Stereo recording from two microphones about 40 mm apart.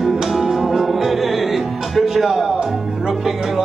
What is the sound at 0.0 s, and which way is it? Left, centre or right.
Music, centre.